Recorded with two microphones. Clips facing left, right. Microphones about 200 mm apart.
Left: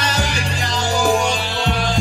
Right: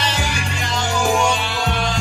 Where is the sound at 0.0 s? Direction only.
40° left (ahead or behind).